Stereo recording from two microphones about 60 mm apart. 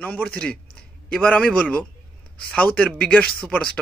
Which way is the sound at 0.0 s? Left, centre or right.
Centre.